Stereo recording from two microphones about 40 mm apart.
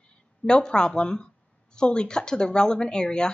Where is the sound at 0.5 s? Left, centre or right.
Left.